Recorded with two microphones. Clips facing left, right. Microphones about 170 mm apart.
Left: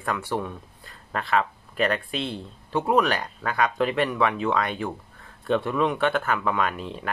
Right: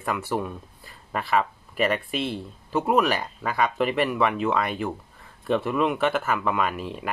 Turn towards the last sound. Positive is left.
turn(degrees=-5)  # may be behind; listen again after turning